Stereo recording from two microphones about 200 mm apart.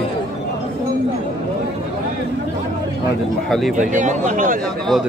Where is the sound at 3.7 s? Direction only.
40° right (ahead or behind).